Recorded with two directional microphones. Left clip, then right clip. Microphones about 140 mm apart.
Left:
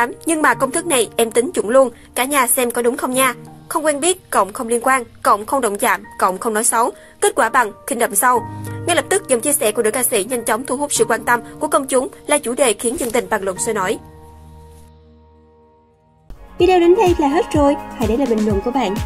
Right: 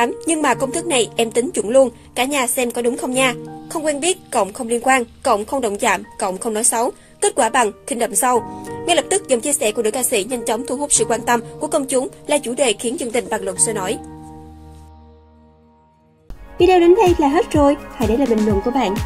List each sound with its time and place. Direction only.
0.4 s a woman's voice: 15° right (ahead or behind)
13.3 s speech: centre (ahead or behind)
16.5 s speech: centre (ahead or behind)